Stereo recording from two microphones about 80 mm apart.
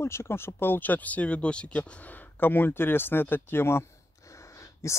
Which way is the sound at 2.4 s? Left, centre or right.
Left.